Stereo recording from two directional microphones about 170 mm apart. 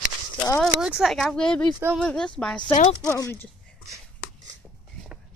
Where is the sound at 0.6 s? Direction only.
5° right (ahead or behind).